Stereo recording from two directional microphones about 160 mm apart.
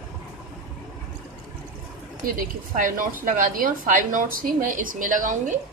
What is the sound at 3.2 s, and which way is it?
A woman's voice, 60° right (ahead or behind).